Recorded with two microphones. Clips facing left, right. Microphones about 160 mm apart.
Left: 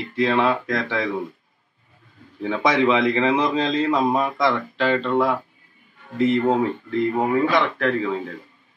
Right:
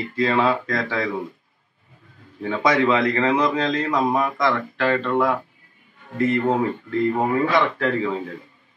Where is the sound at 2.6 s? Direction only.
20° left (ahead or behind).